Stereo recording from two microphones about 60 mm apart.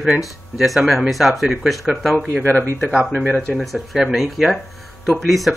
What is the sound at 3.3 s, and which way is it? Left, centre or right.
Speech, left.